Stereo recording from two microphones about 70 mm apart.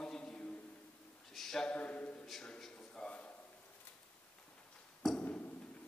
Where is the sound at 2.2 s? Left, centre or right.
Centre.